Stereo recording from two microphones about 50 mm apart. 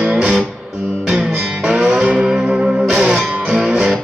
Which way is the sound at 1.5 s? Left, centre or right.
Centre.